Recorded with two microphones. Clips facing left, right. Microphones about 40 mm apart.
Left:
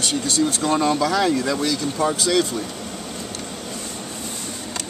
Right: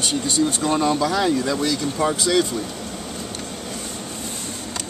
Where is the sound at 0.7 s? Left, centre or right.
Centre.